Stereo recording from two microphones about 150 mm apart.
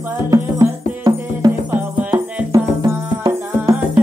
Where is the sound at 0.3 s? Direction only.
25° right (ahead or behind).